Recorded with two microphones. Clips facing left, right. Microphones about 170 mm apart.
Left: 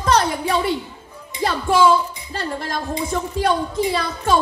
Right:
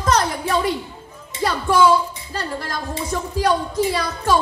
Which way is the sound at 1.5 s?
25° left (ahead or behind).